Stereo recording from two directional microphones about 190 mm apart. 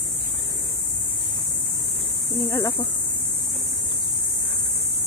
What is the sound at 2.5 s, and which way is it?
Speech, 20° left (ahead or behind).